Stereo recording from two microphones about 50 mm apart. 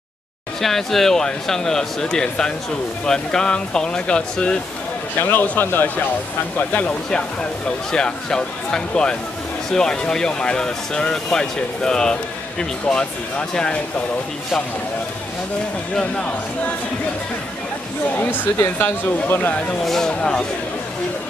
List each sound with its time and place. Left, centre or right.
0.6 s speech: centre
5.2 s speech: left
7.9 s speech: centre
16.0 s speech: left
18.1 s speech: left
19.8 s speech: centre
20.1 s speech: left